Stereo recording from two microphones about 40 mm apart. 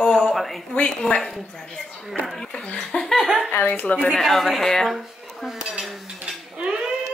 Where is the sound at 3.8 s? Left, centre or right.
Left.